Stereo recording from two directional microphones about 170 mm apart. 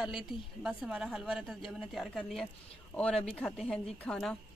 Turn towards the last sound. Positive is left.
turn(degrees=5)  # may be behind; listen again after turning